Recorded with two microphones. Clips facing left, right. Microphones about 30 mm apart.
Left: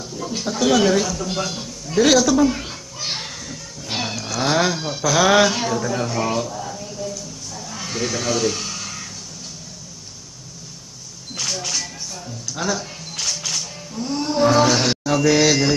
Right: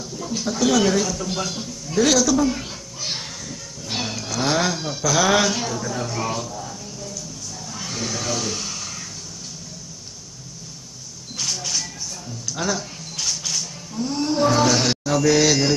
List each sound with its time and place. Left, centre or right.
0.0 s speech: centre
5.8 s speech: left
6.2 s a sound: left
12.5 s speech: centre
13.9 s a sound: centre
15.2 s mantra: centre